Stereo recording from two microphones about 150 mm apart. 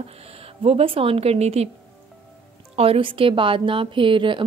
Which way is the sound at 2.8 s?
35° right (ahead or behind).